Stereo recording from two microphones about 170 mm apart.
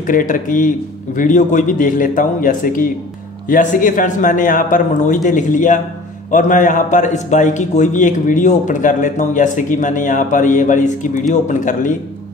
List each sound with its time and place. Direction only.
0.0 s a man's voice: 50° left (ahead or behind)